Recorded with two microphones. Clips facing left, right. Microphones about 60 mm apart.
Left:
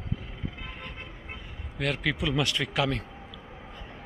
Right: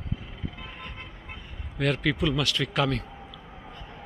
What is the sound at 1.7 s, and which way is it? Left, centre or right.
Speech, centre.